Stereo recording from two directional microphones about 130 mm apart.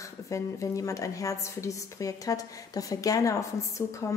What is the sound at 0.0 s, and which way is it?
A woman's voice, 25° left (ahead or behind).